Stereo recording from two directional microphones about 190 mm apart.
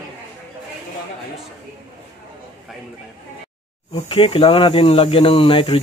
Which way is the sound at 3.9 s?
30° left (ahead or behind).